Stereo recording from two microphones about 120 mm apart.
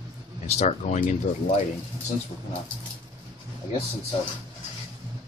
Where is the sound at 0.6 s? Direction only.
70° left (ahead or behind).